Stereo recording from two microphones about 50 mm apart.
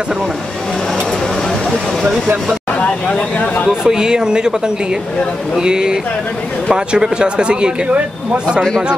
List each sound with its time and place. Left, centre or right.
2.8 s speech: left
3.8 s speech: centre
5.6 s speech: centre